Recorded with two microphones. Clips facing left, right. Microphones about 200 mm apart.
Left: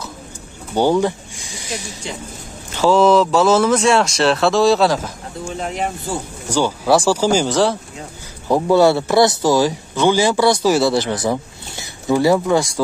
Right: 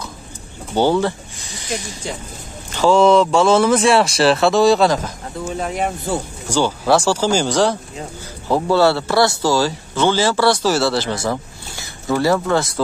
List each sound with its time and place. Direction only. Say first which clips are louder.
0.7 s speech: left 1 dB; 15° left (ahead or behind)
6.5 s a man's voice: even; 10° left (ahead or behind)
8.5 s a man's voice: left 2 dB; 15° left (ahead or behind)